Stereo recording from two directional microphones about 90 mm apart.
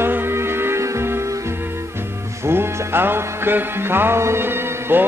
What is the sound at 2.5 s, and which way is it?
Music, 25° right (ahead or behind).